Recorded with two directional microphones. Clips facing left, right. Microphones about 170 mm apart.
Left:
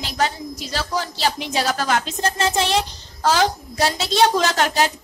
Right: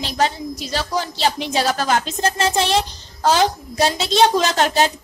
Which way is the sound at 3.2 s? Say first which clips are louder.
Right 2 dB; 20° right (ahead or behind).